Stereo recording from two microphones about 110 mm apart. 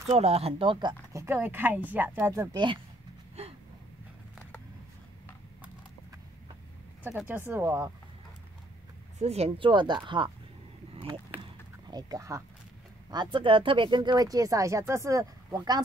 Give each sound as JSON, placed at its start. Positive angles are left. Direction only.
{"t": 0.0, "sound": "speech", "side_deg": -75}
{"t": 1.1, "sound": "speech", "side_deg": -20}
{"t": 2.5, "sound": "speech", "side_deg": -45}
{"t": 7.2, "sound": "speech", "side_deg": -20}
{"t": 9.2, "sound": "speech", "side_deg": -75}
{"t": 9.6, "sound": "speech", "side_deg": -45}
{"t": 11.9, "sound": "speech", "side_deg": -35}
{"t": 13.1, "sound": "speech", "side_deg": -45}